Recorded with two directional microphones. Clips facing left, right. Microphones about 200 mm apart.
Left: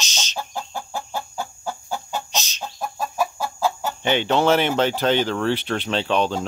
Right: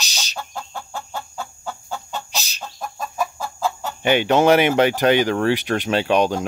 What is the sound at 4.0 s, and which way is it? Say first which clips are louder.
Speech: right 4 dB; 10° right (ahead or behind).